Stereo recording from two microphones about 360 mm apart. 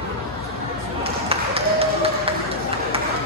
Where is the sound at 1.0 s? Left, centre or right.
Centre.